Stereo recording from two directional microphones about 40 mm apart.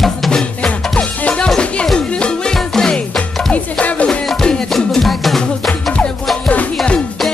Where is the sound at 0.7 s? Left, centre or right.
Left.